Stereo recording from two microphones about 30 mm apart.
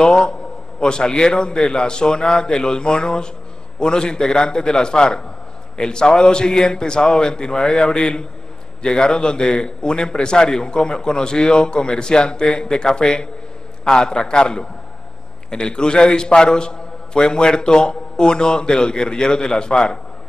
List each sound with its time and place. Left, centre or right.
0.0 s a man's voice: left